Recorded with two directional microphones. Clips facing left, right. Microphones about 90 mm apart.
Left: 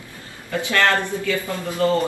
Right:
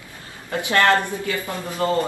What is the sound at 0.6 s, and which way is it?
Speech, 20° right (ahead or behind).